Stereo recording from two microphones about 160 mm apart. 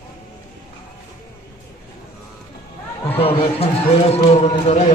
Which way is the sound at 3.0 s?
35° left (ahead or behind).